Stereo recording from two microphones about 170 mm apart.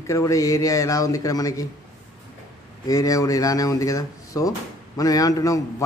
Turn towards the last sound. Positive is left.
turn(degrees=20)  # may be behind; listen again after turning